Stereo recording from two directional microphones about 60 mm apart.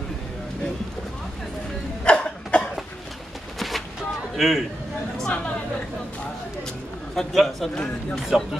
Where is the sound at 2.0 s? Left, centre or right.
Centre.